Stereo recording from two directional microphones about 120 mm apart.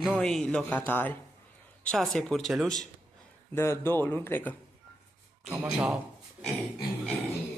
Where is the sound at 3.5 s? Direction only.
20° left (ahead or behind).